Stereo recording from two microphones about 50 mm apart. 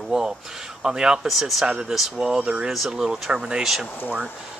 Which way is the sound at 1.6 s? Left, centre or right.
Centre.